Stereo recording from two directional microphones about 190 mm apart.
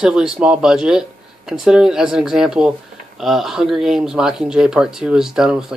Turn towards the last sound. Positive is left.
turn(degrees=-5)  # may be behind; listen again after turning